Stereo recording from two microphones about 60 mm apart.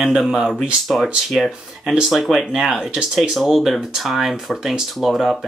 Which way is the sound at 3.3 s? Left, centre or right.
Centre.